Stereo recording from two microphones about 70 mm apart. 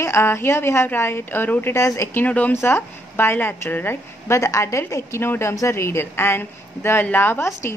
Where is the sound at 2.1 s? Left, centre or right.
Left.